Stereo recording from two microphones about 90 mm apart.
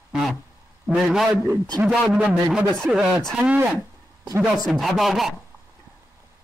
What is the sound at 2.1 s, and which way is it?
A man's voice, 15° right (ahead or behind).